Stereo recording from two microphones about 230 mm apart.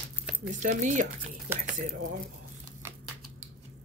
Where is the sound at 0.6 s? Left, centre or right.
Right.